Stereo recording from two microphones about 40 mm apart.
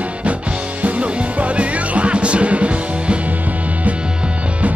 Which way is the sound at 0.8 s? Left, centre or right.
Right.